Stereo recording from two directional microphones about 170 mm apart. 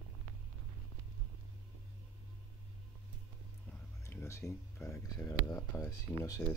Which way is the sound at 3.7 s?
10° left (ahead or behind).